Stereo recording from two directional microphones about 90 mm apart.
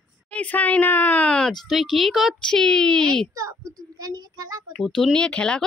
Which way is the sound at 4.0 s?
40° right (ahead or behind).